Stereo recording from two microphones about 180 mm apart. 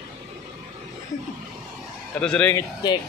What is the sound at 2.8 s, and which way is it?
Speech, 25° left (ahead or behind).